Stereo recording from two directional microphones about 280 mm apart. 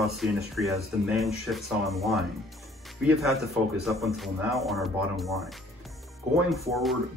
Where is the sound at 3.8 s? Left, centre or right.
Centre.